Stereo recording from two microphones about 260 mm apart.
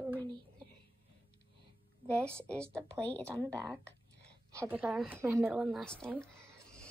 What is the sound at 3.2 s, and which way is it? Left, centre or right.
A woman's voice, centre.